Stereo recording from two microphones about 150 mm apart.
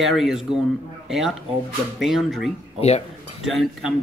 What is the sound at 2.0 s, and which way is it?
Speech, centre (ahead or behind).